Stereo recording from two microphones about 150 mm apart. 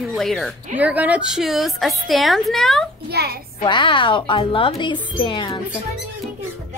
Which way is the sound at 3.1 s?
90° right.